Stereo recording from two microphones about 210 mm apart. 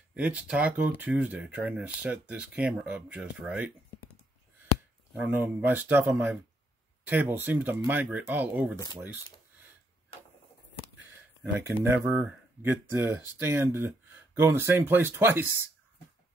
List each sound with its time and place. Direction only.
0.1 s speech: 5° right (ahead or behind)
5.1 s speech: 5° right (ahead or behind)
11.5 s speech: 10° right (ahead or behind)